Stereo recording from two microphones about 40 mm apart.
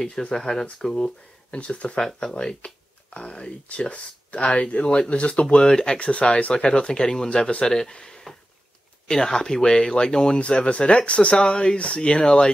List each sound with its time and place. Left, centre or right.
0.0 s speech: left
0.9 s speech: left
5.6 s speech: centre
5.9 s speech: left